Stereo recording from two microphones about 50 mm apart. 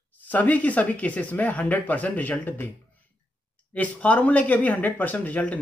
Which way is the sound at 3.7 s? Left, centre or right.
Left.